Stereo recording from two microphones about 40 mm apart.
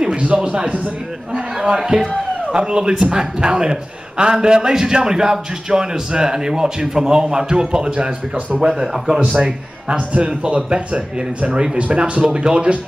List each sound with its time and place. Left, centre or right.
0.0 s a sound: right
0.4 s a man's voice: right
8.5 s speech: centre
9.3 s a man's voice: centre
9.9 s a man's voice: right